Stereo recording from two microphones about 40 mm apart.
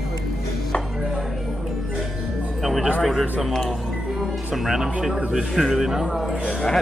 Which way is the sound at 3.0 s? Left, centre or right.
Centre.